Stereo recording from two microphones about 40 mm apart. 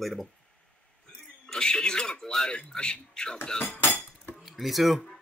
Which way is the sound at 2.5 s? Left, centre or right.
Left.